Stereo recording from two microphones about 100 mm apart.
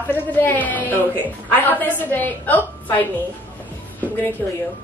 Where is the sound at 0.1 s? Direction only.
20° left (ahead or behind).